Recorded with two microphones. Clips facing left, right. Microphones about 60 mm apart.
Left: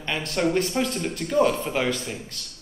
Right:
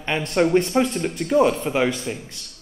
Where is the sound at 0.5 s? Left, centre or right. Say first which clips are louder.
Right 5 dB; centre.